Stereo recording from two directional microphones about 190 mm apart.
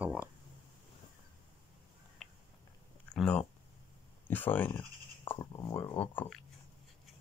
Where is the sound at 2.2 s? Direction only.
Centre (ahead or behind).